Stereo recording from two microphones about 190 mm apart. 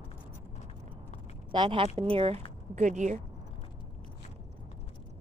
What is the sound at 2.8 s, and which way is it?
Speech, 40° right (ahead or behind).